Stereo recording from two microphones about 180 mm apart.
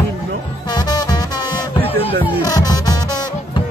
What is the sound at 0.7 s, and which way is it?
Music, 20° left (ahead or behind).